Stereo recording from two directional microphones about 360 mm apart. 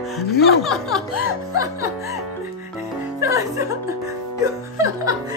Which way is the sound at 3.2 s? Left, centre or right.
Centre.